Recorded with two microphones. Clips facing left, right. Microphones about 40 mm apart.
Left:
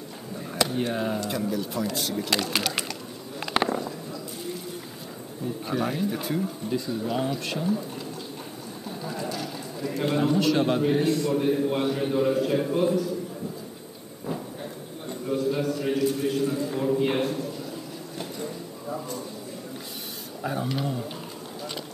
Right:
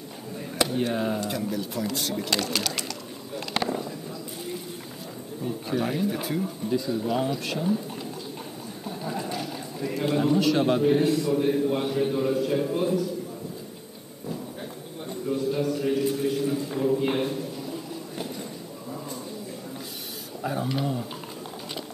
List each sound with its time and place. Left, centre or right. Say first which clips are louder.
0.7 s a man's voice: right 1 dB; centre
2.5 s speech: left 2 dB; centre
3.3 s a sound: left 3 dB; centre
5.7 s a man's voice: right 1 dB; centre
8.8 s a sound: right 1 dB; centre
9.9 s a man's voice: even; centre
15.0 s a sound: left 1 dB; centre
16.1 s a man's voice: even; centre
20.4 s a man's voice: right 1 dB; centre